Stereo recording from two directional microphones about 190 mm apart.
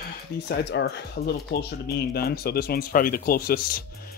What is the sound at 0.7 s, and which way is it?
Speech, 60° left (ahead or behind).